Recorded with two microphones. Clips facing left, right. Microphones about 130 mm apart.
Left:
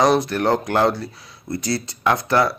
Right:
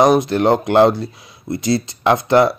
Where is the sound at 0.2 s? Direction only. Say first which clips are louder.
Right 5 dB; 20° right (ahead or behind).